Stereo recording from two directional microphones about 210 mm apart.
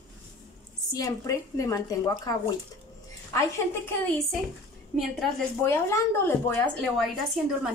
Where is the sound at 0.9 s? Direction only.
15° left (ahead or behind).